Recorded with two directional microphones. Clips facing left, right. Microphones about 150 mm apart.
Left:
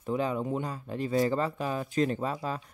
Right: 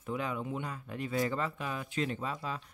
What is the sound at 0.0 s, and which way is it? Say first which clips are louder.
Speech: left 6 dB; 35° left (ahead or behind).